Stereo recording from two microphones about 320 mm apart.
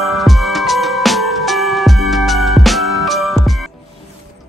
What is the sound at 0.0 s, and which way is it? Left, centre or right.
Music, centre.